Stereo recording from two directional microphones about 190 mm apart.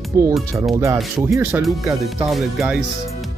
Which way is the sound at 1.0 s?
Centre (ahead or behind).